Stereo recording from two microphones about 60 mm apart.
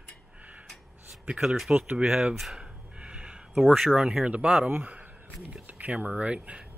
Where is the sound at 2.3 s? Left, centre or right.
Centre.